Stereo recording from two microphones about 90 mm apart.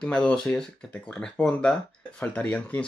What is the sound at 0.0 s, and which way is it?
Speech, 15° left (ahead or behind).